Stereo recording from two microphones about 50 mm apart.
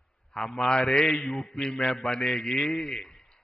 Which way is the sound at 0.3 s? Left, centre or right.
Centre.